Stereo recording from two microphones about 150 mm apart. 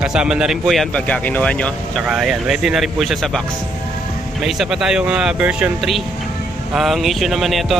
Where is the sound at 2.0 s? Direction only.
5° right (ahead or behind).